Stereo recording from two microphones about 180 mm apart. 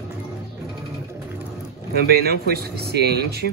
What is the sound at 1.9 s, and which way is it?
Speech, 60° right (ahead or behind).